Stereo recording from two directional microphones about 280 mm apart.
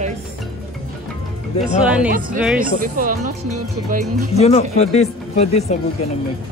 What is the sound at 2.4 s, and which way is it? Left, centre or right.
Speech, centre.